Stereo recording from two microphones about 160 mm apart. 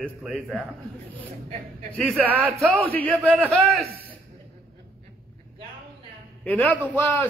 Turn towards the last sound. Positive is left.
turn(degrees=10)  # may be behind; listen again after turning